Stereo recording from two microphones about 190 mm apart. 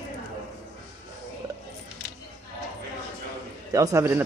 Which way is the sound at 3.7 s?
15° right (ahead or behind).